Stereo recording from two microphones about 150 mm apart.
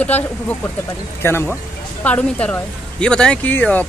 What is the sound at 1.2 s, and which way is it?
Speech, 15° left (ahead or behind).